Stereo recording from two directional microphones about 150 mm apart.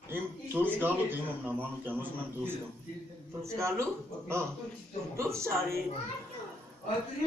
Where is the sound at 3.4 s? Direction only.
20° right (ahead or behind).